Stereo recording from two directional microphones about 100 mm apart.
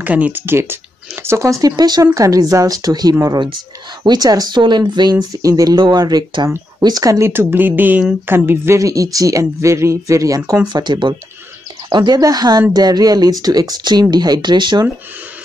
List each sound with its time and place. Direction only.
0.0 s speech: 15° right (ahead or behind); by 5.1 s 50° right (ahead or behind)
5.3 s speech: 35° right (ahead or behind)
10.7 s speech: 45° right (ahead or behind)